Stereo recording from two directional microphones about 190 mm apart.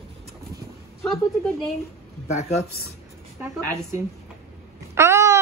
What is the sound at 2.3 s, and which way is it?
Speech, 35° left (ahead or behind).